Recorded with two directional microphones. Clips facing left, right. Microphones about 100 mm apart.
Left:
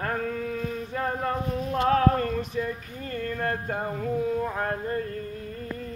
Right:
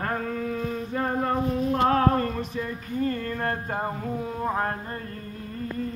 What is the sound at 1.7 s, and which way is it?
Speech, 40° right (ahead or behind).